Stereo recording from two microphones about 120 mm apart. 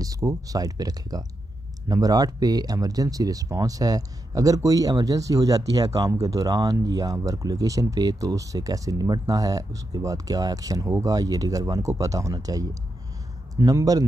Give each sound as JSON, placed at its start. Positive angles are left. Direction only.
{"t": 0.0, "sound": "speech", "side_deg": -30}